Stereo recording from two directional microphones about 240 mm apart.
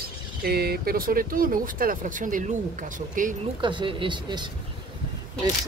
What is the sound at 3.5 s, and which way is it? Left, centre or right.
Speech, centre.